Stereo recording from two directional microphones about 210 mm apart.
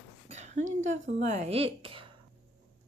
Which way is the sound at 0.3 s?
35° right (ahead or behind).